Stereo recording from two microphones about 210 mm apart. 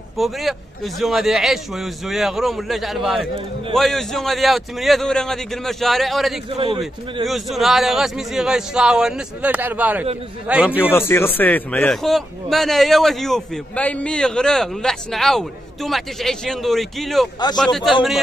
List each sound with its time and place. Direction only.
0.2 s a man's voice: centre (ahead or behind)
6.5 s a man's voice: 25° right (ahead or behind)
7.2 s a man's voice: centre (ahead or behind)
10.8 s a man's voice: 10° left (ahead or behind)